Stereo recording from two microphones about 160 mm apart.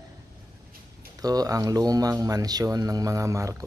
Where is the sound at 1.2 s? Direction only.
25° right (ahead or behind).